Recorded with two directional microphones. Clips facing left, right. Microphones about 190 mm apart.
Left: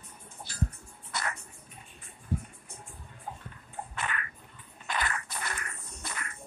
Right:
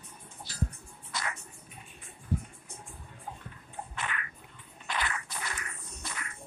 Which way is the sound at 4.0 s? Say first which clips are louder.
Left 2 dB; 45° left (ahead or behind).